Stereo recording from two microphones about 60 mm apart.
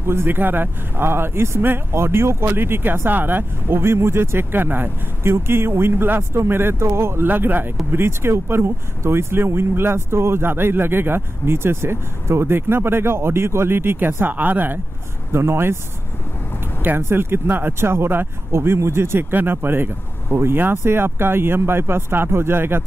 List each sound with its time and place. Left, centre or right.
0.0 s speech: right
7.2 s speech: right
15.3 s speech: right
16.8 s speech: right